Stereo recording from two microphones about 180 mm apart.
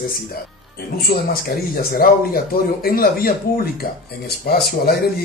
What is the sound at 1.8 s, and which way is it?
Speech, 55° left (ahead or behind).